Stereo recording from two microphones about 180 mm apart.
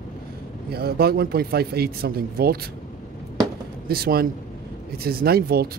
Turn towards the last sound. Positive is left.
turn(degrees=-60)  # may be behind; listen again after turning